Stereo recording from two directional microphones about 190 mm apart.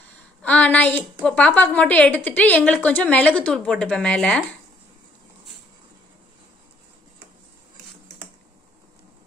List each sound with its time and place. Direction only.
0.4 s a woman's voice: 5° left (ahead or behind)